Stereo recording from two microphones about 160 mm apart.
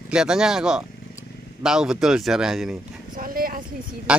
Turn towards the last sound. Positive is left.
turn(degrees=-5)  # may be behind; listen again after turning